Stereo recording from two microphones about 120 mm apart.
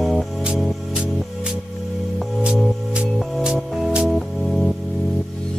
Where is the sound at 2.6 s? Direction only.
5° right (ahead or behind).